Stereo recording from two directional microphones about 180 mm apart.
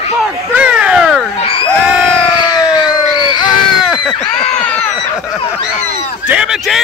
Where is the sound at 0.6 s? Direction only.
5° right (ahead or behind).